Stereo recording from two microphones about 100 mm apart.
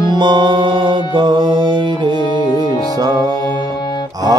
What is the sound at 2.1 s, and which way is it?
Music, 50° left (ahead or behind).